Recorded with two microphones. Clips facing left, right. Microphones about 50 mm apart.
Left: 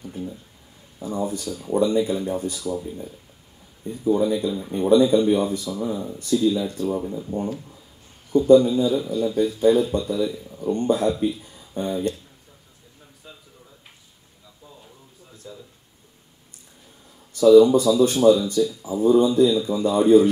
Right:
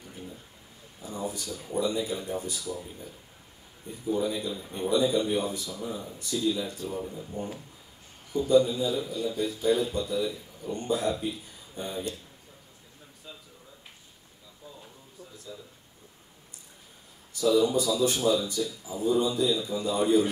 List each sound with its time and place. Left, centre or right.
1.0 s a man's voice: left
4.0 s speech: left
4.6 s speech: left
4.8 s speech: left
8.3 s speech: left
15.5 s a sound: left
17.3 s a man's voice: left